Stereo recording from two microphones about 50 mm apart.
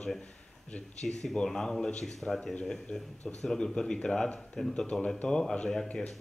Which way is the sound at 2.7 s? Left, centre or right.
Left.